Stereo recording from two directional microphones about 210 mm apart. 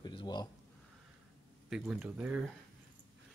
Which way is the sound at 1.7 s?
5° right (ahead or behind).